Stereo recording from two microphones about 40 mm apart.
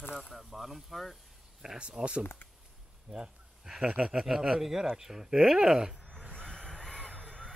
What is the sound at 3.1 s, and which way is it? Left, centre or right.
Speech, centre.